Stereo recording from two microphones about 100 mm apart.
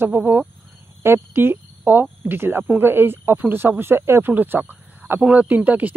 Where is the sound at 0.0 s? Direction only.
20° right (ahead or behind).